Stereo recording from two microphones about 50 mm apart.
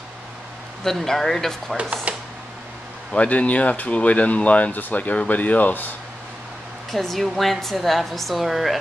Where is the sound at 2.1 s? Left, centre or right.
Right.